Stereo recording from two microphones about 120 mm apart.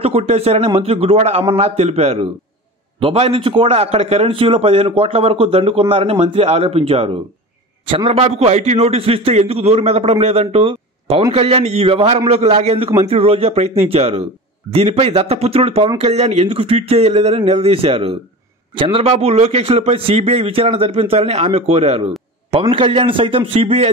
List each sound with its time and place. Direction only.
0.0 s a man's voice: 60° right (ahead or behind)
7.8 s a man's voice: 45° right (ahead or behind)
18.8 s a man's voice: 45° right (ahead or behind)
22.5 s a man's voice: 50° right (ahead or behind)